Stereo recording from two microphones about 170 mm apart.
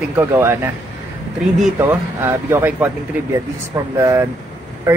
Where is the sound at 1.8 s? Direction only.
15° right (ahead or behind).